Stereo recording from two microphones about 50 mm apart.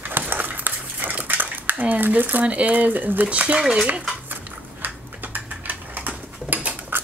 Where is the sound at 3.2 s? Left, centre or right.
Right.